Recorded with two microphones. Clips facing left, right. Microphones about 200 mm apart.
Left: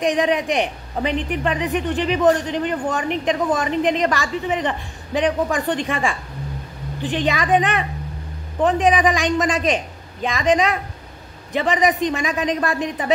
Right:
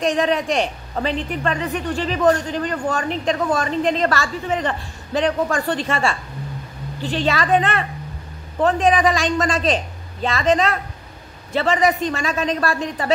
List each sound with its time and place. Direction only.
0.0 s a man's voice: 15° left (ahead or behind)